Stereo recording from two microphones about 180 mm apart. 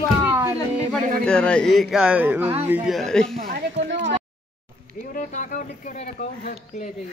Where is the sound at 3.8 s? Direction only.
90° right.